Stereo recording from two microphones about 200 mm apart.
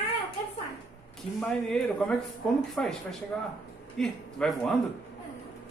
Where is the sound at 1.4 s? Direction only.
5° left (ahead or behind).